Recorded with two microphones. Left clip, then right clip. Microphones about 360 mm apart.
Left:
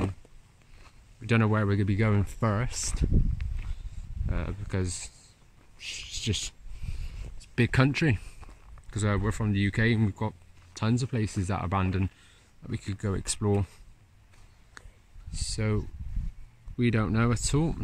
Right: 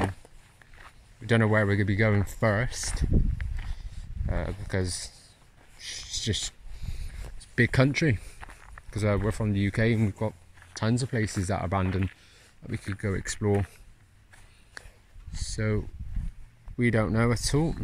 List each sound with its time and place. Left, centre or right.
1.2 s speech: centre
3.6 s a sound: centre
4.3 s speech: centre
7.5 s speech: centre
8.4 s walk: right
8.9 s speech: centre
14.8 s a sound: centre
15.3 s speech: centre